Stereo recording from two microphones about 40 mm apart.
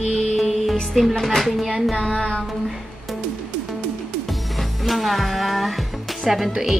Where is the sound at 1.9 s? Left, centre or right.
Left.